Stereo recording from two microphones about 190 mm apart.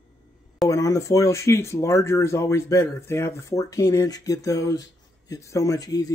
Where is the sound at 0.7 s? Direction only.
15° left (ahead or behind).